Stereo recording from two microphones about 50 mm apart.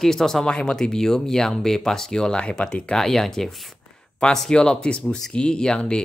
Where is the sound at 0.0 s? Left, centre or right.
Centre.